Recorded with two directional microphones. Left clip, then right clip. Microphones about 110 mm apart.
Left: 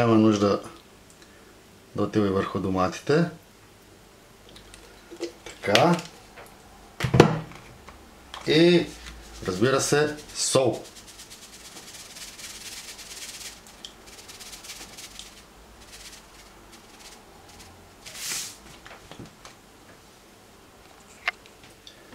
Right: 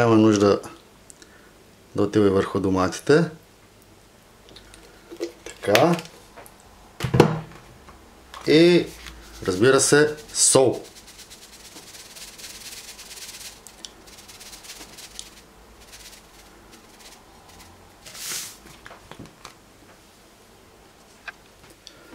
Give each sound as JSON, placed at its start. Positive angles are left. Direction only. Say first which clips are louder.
{"t": 0.0, "sound": "speech", "louder": "right 4 dB", "side_deg": -35}
{"t": 2.0, "sound": "speech", "louder": "right 5 dB", "side_deg": -30}
{"t": 5.2, "sound": "tick-tock", "louder": "right 3 dB", "side_deg": -25}
{"t": 7.0, "sound": "a sound", "louder": "even", "side_deg": 0}
{"t": 8.5, "sound": "speech", "louder": "right 3 dB", "side_deg": -30}